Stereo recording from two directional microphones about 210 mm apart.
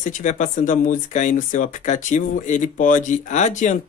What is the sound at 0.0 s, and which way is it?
Speech, 35° left (ahead or behind).